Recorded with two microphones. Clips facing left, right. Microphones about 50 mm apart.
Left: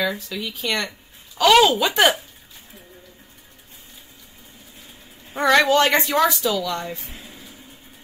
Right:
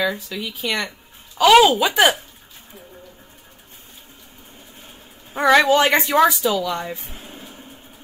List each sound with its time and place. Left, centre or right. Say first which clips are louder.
0.0 s speech: right 1 dB; centre
5.3 s a woman's voice: right 2 dB; centre
7.1 s a sound: right 2 dB; right